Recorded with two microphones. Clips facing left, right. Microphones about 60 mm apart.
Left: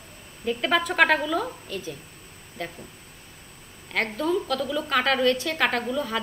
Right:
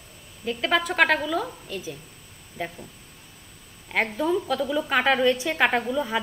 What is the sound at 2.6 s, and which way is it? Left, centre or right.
Speech, centre.